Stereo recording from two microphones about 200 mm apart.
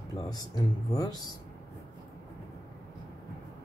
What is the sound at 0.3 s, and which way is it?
Speech, 20° left (ahead or behind).